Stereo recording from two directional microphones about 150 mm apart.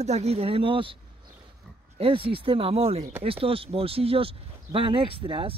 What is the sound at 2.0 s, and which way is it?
Speech, 35° right (ahead or behind).